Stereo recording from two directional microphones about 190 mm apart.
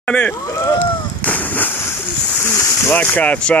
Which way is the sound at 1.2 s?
10° left (ahead or behind).